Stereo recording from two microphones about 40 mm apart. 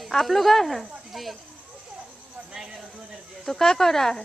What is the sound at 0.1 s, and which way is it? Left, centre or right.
A woman's voice, centre.